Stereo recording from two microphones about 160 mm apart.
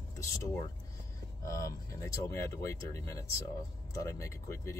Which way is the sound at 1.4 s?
20° left (ahead or behind).